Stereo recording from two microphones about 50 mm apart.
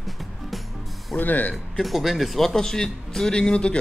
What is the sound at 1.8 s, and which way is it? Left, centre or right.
Speech, centre.